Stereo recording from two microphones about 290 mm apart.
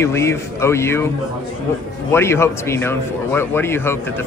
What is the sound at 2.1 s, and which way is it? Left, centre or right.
A man's voice, centre.